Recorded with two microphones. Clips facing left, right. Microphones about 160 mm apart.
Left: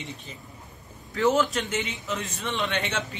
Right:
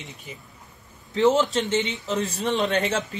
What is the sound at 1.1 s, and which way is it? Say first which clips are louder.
A man's voice: right 3 dB; 20° right (ahead or behind).